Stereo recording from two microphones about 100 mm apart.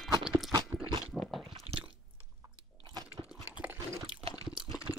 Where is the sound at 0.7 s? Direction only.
35° right (ahead or behind).